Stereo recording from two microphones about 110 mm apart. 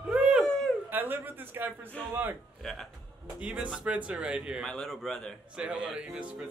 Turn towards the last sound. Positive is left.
turn(degrees=-10)  # may be behind; listen again after turning